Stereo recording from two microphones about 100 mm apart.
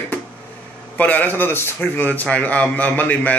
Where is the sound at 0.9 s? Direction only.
15° left (ahead or behind).